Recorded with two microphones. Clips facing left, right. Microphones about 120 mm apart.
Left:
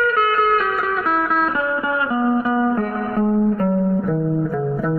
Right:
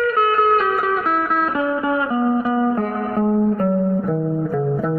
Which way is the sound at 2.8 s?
25° right (ahead or behind).